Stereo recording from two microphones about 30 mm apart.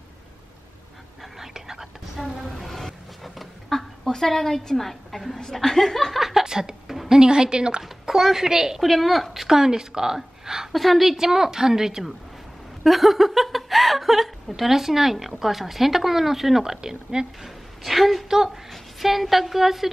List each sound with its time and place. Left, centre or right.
1.4 s whispering: centre
3.7 s a woman's voice: centre
6.1 s a woman's voice: centre
6.4 s a woman's voice: right
8.1 s a woman's voice: centre
8.8 s a woman's voice: centre
10.7 s a woman's voice: centre
11.1 s a woman's voice: centre
12.8 s a woman's voice: centre; by 17.3 s right
17.4 s a woman's voice: centre
18.3 s a woman's voice: centre
18.7 s a woman's voice: centre